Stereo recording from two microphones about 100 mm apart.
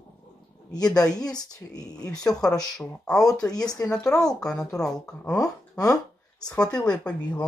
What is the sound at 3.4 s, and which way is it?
Speech, 40° left (ahead or behind).